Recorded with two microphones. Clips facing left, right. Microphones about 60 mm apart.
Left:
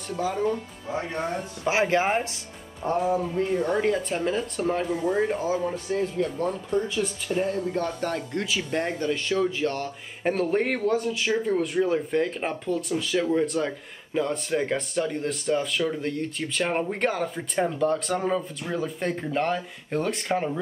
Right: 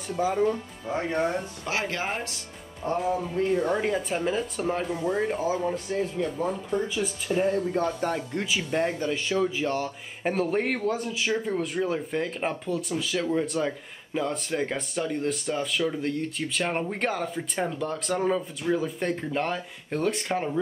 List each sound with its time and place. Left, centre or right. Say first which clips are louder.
0.2 s speech: right 2 dB; centre
1.6 s speech: left 7 dB; left
3.5 s a man's voice: left 3 dB; centre